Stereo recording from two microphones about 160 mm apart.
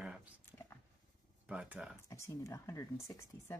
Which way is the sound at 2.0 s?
20° left (ahead or behind).